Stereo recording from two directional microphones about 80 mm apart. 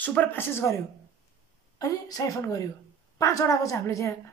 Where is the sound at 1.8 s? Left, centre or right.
Left.